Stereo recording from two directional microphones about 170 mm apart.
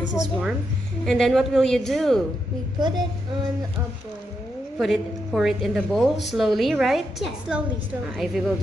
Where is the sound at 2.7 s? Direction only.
25° right (ahead or behind).